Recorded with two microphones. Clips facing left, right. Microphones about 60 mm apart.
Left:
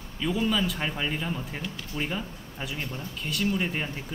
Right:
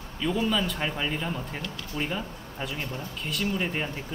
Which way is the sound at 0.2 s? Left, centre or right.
Centre.